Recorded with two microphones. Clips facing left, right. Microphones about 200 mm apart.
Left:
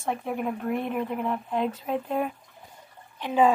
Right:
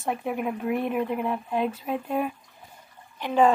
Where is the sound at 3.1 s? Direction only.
Centre (ahead or behind).